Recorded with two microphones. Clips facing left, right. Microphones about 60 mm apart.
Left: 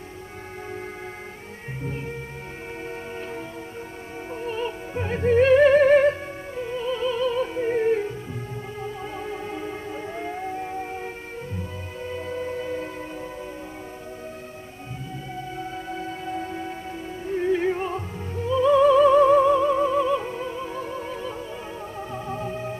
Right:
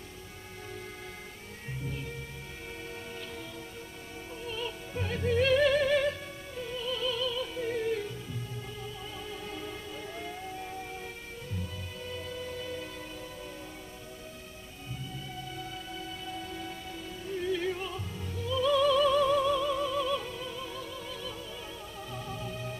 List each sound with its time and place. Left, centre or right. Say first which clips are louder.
1.8 s music: left 8 dB; left
4.3 s music: left 9 dB; left
8.8 s theremin: left 9 dB; left
11.5 s music: left 6 dB; left
15.5 s music: left 8 dB; left